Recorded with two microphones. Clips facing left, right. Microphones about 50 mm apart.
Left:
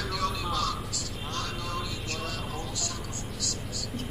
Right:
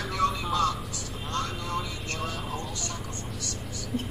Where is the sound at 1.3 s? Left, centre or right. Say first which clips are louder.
Right 4 dB; right.